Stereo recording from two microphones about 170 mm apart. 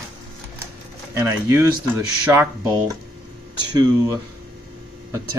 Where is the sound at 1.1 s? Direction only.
15° right (ahead or behind).